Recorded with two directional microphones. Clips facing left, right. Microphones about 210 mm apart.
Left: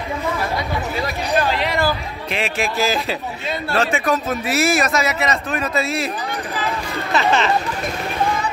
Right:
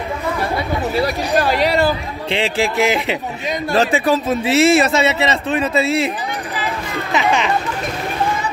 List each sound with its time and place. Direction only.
0.9 s chatter: 35° right (ahead or behind)
1.9 s a sound: 30° right (ahead or behind)
2.8 s speech: 20° right (ahead or behind)
3.7 s a man's voice: 35° right (ahead or behind)
7.1 s speech: 15° right (ahead or behind)